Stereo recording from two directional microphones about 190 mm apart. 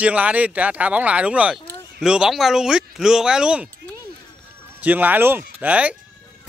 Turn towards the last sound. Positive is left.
turn(degrees=-5)  # may be behind; listen again after turning